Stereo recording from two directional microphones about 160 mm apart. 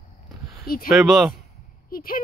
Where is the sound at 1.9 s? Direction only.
65° left (ahead or behind).